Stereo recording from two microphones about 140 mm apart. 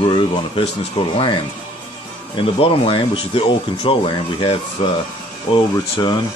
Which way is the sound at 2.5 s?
45° left (ahead or behind).